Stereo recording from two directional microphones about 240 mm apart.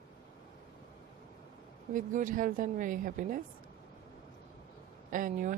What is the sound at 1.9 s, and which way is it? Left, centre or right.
Speech, right.